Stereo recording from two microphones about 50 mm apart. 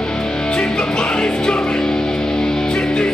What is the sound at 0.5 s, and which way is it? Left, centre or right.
Music, centre.